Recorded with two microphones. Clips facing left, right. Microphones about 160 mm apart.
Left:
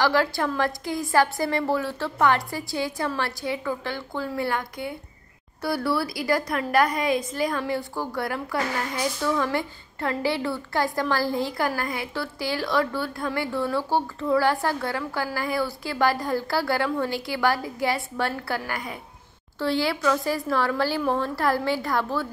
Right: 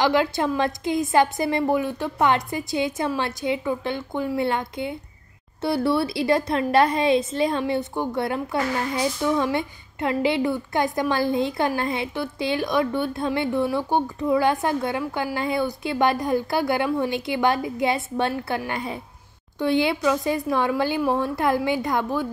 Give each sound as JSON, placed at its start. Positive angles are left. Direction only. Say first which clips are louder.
{"t": 0.0, "sound": "a woman's voice", "louder": "right 2 dB", "side_deg": -20}